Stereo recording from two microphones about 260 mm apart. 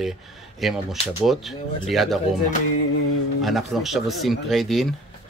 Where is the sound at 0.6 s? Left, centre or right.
Centre.